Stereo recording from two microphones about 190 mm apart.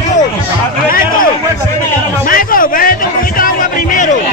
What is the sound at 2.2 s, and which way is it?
Music, 50° left (ahead or behind).